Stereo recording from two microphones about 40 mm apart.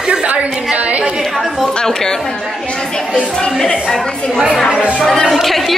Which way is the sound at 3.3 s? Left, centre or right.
Centre.